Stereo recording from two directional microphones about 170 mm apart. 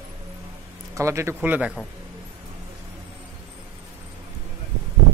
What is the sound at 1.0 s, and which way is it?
Speech, 15° right (ahead or behind).